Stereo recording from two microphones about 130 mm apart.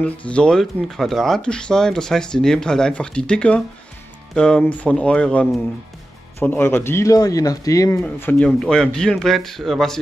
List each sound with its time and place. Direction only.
0.0 s speech: 10° left (ahead or behind); by 8.0 s 25° left (ahead or behind)
8.0 s speech: 10° left (ahead or behind)